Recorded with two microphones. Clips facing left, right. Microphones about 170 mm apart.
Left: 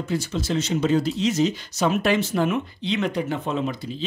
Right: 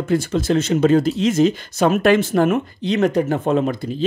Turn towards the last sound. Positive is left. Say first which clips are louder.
# right 7 dB
turn(degrees=-50)  # may be behind; listen again after turning